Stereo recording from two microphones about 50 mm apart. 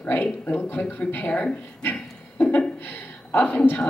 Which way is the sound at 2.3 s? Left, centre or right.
Left.